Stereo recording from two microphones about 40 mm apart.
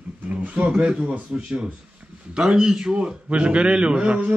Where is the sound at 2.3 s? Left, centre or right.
Centre.